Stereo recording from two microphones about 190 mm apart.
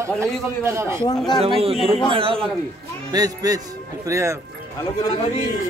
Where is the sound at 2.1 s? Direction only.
30° right (ahead or behind).